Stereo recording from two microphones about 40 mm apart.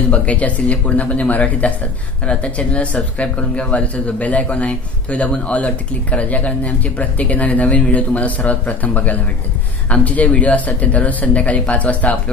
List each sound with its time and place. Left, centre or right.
0.1 s a man's voice: left